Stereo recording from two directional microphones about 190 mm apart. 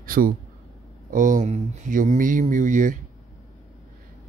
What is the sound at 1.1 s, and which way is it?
Speech, 40° right (ahead or behind).